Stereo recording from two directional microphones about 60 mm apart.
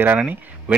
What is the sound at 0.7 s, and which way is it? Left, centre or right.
Speech, right.